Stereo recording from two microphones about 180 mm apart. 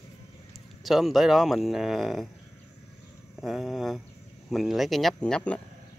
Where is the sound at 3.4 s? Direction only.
Centre (ahead or behind).